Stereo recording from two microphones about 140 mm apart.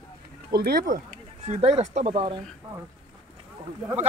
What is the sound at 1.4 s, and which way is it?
Speech, 50° right (ahead or behind).